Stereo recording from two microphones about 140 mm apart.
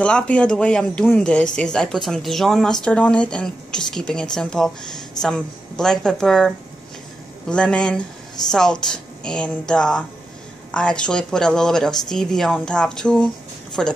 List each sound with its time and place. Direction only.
0.0 s speech: 10° left (ahead or behind)